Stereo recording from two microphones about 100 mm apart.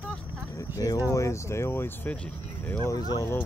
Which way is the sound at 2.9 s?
40° left (ahead or behind).